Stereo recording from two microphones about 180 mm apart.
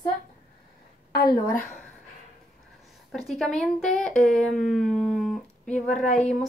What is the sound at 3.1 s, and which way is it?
Speech, centre (ahead or behind).